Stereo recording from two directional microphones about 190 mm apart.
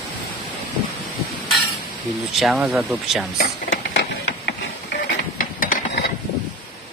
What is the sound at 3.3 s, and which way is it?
Printer, 60° left (ahead or behind).